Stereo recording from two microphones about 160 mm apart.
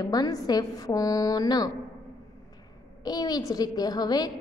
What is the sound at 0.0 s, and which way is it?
A woman's voice, 25° left (ahead or behind).